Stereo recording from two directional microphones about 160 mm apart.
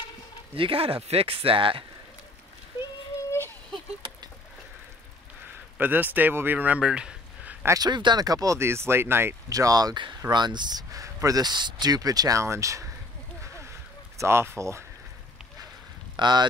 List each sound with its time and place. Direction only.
0.6 s speech: 35° right (ahead or behind)
3.2 s a sound: 15° left (ahead or behind)
5.8 s speech: 10° right (ahead or behind)
7.6 s speech: 25° right (ahead or behind)
14.1 s speech: 15° right (ahead or behind)
16.2 s speech: 25° right (ahead or behind)